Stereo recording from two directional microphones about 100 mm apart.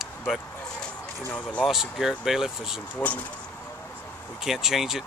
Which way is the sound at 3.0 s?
15° left (ahead or behind).